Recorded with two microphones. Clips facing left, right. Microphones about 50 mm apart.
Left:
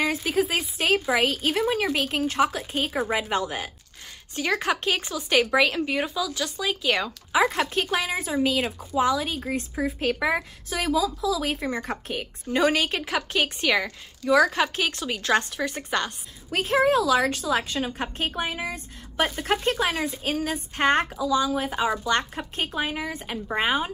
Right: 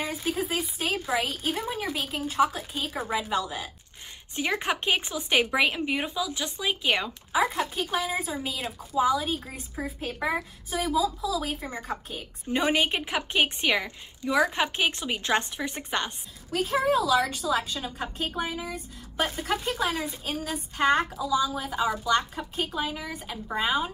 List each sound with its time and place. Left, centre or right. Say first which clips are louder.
0.0 s a woman's voice: left 6 dB; left
3.1 s a woman's voice: left 2 dB; left
4.4 s a woman's voice: left 3 dB; right
7.3 s a woman's voice: left 4 dB; left
12.4 s a woman's voice: left 2 dB; right
16.5 s a woman's voice: left 3 dB; left